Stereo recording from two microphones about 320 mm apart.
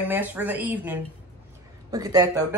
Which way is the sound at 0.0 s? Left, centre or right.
Centre.